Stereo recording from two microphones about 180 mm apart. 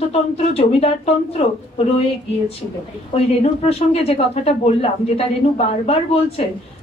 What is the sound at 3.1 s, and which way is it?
A woman's voice, 35° left (ahead or behind).